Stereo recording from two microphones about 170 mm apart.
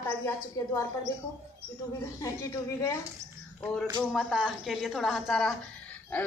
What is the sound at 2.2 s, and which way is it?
Speech, 20° left (ahead or behind).